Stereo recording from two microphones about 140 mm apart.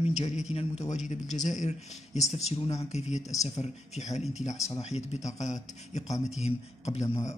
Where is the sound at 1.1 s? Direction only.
60° left (ahead or behind).